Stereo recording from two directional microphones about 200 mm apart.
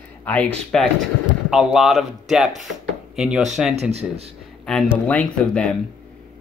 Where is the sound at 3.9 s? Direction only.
30° right (ahead or behind).